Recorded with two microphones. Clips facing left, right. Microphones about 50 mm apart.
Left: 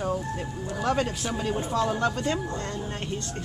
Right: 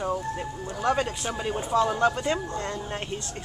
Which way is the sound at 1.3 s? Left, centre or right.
Centre.